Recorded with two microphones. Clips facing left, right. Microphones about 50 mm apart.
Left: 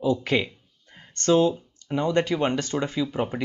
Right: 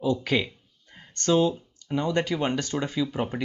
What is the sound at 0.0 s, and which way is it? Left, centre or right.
Speech, centre.